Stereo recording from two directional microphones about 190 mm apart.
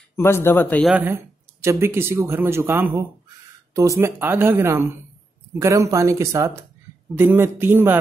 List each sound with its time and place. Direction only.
0.1 s speech: 10° left (ahead or behind)
0.9 s speech: 10° right (ahead or behind)